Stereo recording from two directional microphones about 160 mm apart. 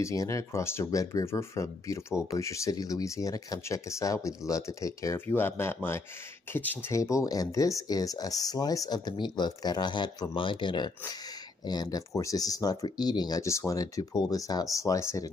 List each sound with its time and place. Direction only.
0.0 s speech: 20° left (ahead or behind)